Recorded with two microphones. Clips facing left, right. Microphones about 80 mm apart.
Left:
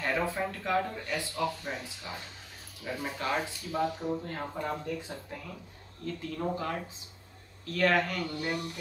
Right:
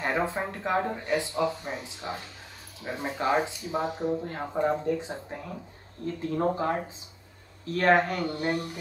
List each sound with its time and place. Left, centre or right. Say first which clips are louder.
0.0 s speech: right 2 dB; right